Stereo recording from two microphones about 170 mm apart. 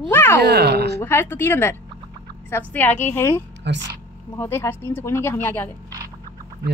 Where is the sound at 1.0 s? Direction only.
15° left (ahead or behind).